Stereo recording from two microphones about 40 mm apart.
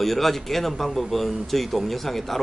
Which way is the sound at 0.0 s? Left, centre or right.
Centre.